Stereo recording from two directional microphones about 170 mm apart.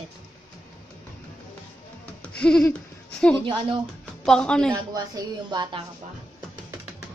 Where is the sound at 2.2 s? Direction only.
5° left (ahead or behind).